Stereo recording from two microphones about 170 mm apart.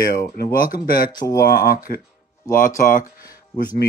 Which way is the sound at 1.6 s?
60° left (ahead or behind).